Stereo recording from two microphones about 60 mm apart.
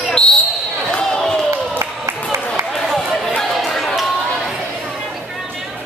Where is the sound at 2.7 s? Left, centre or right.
Centre.